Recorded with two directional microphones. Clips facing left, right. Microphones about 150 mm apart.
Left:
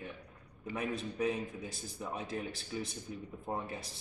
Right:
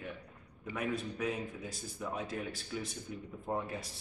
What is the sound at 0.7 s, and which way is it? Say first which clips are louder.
Speech: right 1 dB; 25° left (ahead or behind).